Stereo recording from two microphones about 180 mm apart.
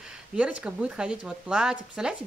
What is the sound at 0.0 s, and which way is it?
Speech, 5° right (ahead or behind).